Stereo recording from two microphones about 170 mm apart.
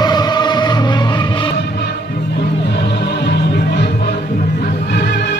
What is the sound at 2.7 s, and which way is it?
Music, 75° left (ahead or behind).